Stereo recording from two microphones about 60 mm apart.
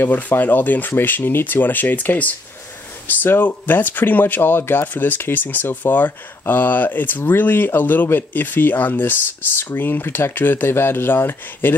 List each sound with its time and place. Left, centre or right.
0.0 s speech: left